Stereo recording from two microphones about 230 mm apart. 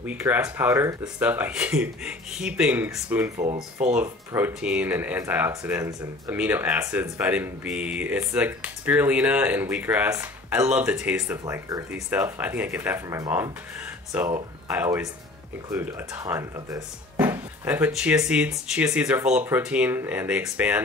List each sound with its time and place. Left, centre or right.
0.0 s speech: centre
3.5 s speech: right
3.9 s speech: centre